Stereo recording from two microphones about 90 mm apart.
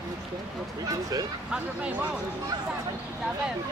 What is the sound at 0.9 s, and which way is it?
Speech, 45° right (ahead or behind).